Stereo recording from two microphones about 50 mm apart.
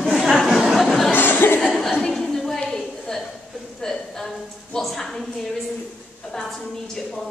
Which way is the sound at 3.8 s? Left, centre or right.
Centre.